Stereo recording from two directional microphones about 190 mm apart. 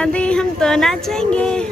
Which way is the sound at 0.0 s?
5° left (ahead or behind).